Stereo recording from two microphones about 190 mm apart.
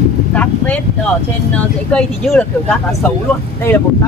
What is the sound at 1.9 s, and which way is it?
Speech, 5° left (ahead or behind).